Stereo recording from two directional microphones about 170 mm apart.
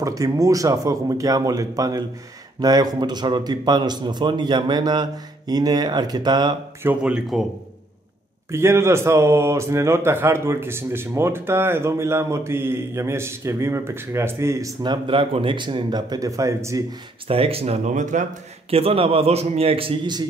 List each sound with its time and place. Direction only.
0.0 s a man's voice: 20° right (ahead or behind)
6.8 s speech: 10° right (ahead or behind)
8.5 s a man's voice: 15° right (ahead or behind)
14.8 s a man's voice: 30° right (ahead or behind)
17.3 s a man's voice: 35° right (ahead or behind)
18.7 s a man's voice: 35° right (ahead or behind)